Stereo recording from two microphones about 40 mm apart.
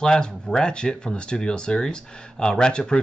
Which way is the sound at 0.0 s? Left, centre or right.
Left.